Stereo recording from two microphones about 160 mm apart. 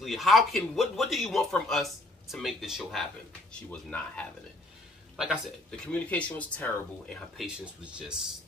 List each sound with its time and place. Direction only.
0.0 s speech: centre (ahead or behind)
5.9 s speech: 10° left (ahead or behind)
7.3 s speech: 5° right (ahead or behind)